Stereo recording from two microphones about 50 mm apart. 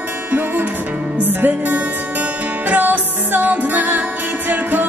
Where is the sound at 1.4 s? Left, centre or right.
Right.